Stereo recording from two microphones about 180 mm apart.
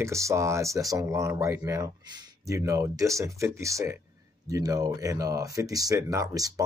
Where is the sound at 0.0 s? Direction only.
15° right (ahead or behind).